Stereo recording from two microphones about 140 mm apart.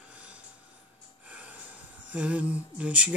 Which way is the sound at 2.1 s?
10° right (ahead or behind).